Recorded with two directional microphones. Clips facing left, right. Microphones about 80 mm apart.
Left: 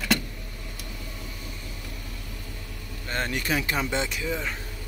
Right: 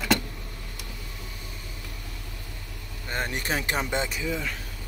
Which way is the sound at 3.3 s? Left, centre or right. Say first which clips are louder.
Left 2 dB; right.